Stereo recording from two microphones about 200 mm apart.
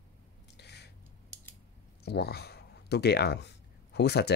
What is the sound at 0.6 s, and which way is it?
Squish, 55° left (ahead or behind).